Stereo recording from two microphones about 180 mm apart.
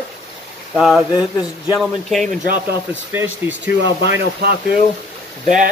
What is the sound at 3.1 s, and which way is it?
Speech, 10° right (ahead or behind).